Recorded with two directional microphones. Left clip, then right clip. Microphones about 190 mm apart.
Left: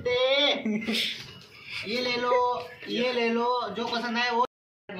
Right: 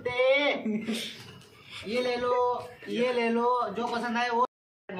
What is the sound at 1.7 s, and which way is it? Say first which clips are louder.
A man's voice: even; 10° right (ahead or behind).